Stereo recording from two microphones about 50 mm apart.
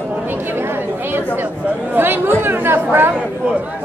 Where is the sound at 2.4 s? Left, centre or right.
Right.